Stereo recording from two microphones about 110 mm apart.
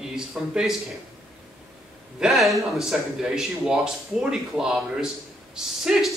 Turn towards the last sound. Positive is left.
turn(degrees=-5)  # may be behind; listen again after turning